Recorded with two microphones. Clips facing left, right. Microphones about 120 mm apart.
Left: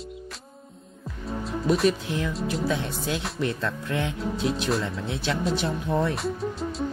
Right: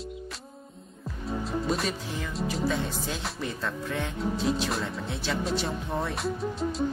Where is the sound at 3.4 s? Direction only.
70° left (ahead or behind).